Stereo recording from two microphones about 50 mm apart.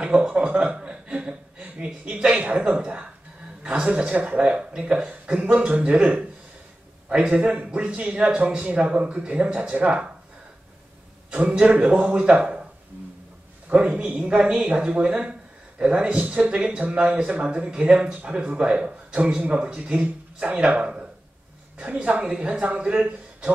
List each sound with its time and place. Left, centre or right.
0.0 s speech: right
7.3 s speech: right
11.3 s speech: right
13.7 s speech: right